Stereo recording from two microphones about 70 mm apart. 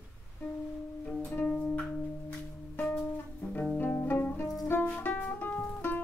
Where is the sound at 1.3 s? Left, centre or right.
Centre.